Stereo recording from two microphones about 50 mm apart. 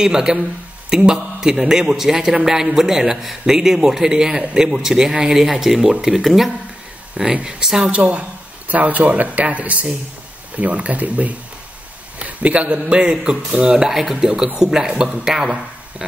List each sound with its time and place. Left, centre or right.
0.0 s a man's voice: centre
6.2 s a man's voice: centre
7.8 s a man's voice: right